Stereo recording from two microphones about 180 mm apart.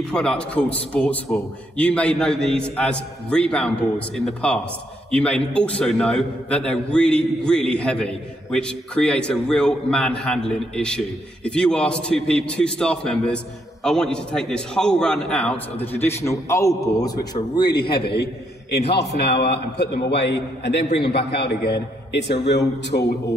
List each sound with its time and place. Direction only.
0.0 s a man's voice: 5° left (ahead or behind); by 17.7 s 25° left (ahead or behind)
17.7 s a man's voice: 60° left (ahead or behind)